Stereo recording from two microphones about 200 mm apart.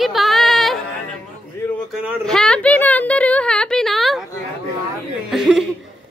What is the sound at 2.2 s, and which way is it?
A woman's voice, 5° left (ahead or behind).